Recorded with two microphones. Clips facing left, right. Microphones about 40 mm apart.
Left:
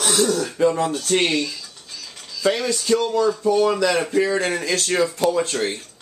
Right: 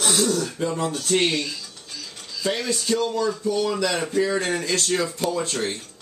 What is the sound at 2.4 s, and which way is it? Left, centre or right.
Speech, left.